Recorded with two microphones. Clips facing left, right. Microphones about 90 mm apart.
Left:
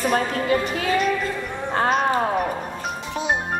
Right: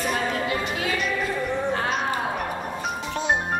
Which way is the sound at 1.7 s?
45° left (ahead or behind).